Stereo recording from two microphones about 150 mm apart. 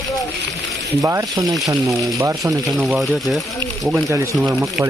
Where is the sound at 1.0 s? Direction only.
20° right (ahead or behind).